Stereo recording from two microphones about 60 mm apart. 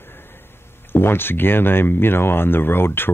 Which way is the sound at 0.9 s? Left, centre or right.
Left.